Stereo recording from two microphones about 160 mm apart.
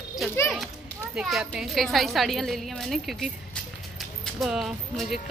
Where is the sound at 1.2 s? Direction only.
5° right (ahead or behind).